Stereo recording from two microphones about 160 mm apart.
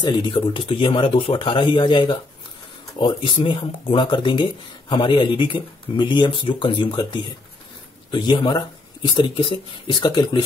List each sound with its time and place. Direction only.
0.0 s speech: 30° left (ahead or behind)